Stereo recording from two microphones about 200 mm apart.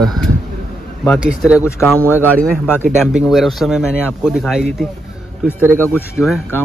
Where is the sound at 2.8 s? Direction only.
5° right (ahead or behind).